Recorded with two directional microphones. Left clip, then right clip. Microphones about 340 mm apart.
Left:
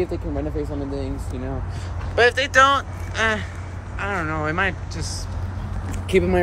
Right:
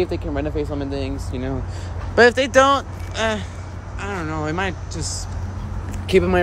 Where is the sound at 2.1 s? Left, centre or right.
Right; by 5.0 s centre.